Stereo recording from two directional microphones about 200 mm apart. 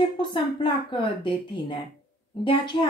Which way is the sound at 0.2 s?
25° left (ahead or behind).